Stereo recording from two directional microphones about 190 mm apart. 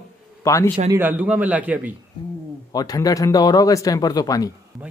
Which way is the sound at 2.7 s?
20° left (ahead or behind).